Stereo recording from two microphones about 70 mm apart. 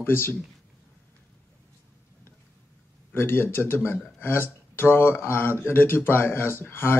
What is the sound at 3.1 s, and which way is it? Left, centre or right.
A man's voice, left.